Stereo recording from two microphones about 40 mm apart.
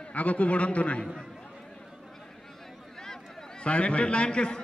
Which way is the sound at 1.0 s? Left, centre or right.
Centre.